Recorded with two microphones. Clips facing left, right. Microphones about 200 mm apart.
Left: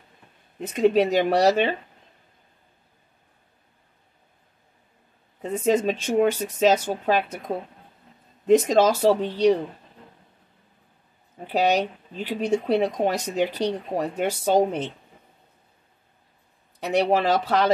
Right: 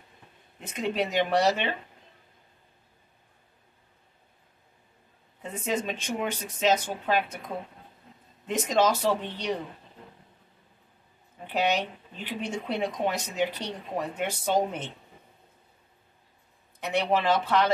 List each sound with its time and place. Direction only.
0.7 s speech: 40° left (ahead or behind)
5.4 s speech: 40° left (ahead or behind)
11.5 s speech: 40° left (ahead or behind)
16.8 s speech: 40° left (ahead or behind)